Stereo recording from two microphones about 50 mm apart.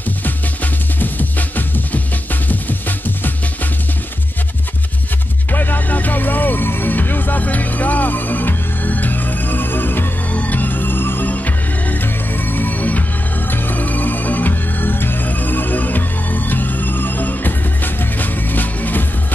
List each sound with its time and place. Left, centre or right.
5.5 s music: left
12.5 s music: left